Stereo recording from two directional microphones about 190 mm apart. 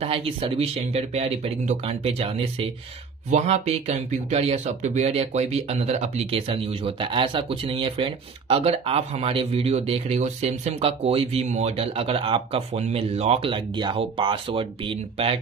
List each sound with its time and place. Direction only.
0.0 s speech: 30° right (ahead or behind)